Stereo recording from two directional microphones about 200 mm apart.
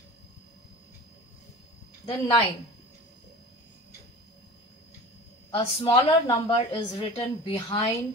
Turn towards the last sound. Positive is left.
turn(degrees=20)  # may be behind; listen again after turning